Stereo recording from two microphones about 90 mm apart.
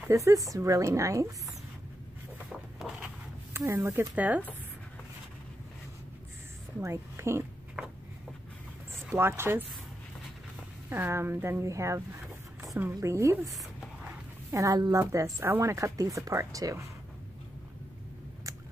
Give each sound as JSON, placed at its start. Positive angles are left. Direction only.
{"t": 0.1, "sound": "speech", "side_deg": -35}
{"t": 2.8, "sound": "a sound", "side_deg": -5}
{"t": 3.5, "sound": "speech", "side_deg": -30}
{"t": 4.2, "sound": "speech", "side_deg": -15}
{"t": 6.8, "sound": "speech", "side_deg": -30}
{"t": 9.1, "sound": "speech", "side_deg": -25}
{"t": 10.9, "sound": "speech", "side_deg": -25}
{"t": 14.5, "sound": "speech", "side_deg": -40}